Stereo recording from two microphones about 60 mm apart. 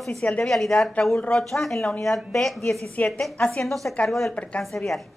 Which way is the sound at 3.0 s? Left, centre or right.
Left.